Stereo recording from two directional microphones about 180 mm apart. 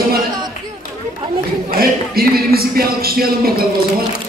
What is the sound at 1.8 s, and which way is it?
Speech, 55° right (ahead or behind).